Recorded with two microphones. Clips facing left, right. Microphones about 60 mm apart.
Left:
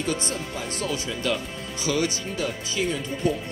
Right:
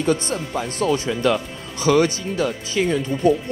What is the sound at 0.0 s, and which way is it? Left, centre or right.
Speech, right.